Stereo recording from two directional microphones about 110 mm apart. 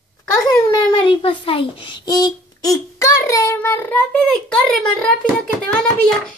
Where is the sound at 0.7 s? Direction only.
50° left (ahead or behind).